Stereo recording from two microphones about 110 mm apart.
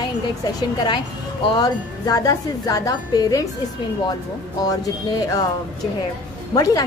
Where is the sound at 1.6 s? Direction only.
35° left (ahead or behind).